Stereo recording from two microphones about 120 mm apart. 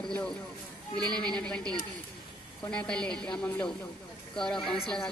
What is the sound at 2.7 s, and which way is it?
A woman's voice, 10° left (ahead or behind).